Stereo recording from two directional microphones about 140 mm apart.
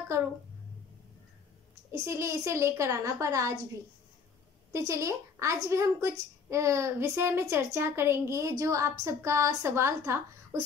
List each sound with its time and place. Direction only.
1.9 s a woman's voice: 20° right (ahead or behind)
4.7 s a woman's voice: 20° right (ahead or behind)